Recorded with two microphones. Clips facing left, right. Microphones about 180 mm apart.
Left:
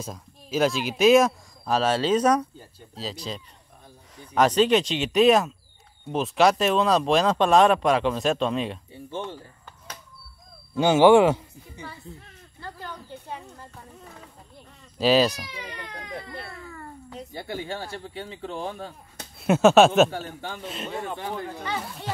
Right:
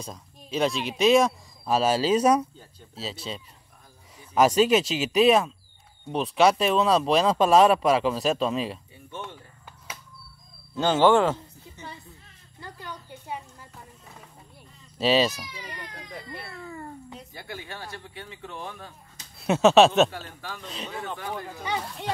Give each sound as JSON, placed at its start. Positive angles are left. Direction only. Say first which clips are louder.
{"t": 0.0, "sound": "speech", "louder": "left 2 dB", "side_deg": 5}
{"t": 10.8, "sound": "speech", "louder": "left 4 dB", "side_deg": 10}
{"t": 12.5, "sound": "a sound", "louder": "left 2 dB", "side_deg": -15}
{"t": 15.0, "sound": "speech", "louder": "left 2 dB", "side_deg": 0}
{"t": 17.3, "sound": "speech", "louder": "left 9 dB", "side_deg": 25}
{"t": 19.4, "sound": "speech", "louder": "left 1 dB", "side_deg": 5}
{"t": 20.1, "sound": "speech", "louder": "left 5 dB", "side_deg": 30}
{"t": 20.6, "sound": "speech", "louder": "left 3 dB", "side_deg": 0}